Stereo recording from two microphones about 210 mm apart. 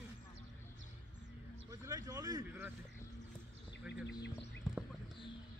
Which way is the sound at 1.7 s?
15° right (ahead or behind).